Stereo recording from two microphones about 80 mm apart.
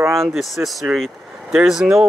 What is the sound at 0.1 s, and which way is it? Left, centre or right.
Speech, centre.